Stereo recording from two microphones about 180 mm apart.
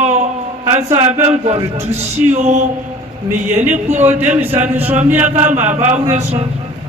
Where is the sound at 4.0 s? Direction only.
10° right (ahead or behind).